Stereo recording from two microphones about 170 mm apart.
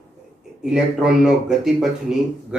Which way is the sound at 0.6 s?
5° right (ahead or behind).